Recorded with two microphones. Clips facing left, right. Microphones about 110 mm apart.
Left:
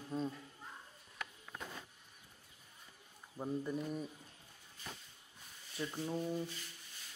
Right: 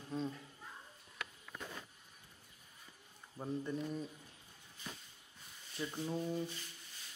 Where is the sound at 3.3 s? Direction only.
10° left (ahead or behind).